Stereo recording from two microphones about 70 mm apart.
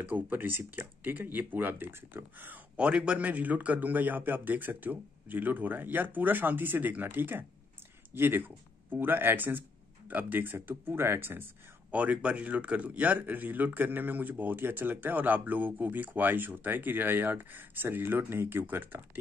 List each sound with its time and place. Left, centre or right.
0.0 s a man's voice: right
2.8 s a man's voice: centre; by 11.4 s right
11.9 s a man's voice: right